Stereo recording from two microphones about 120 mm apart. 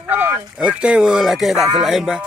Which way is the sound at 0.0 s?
15° right (ahead or behind).